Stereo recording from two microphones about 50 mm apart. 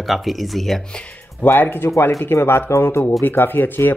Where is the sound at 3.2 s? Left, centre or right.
Left.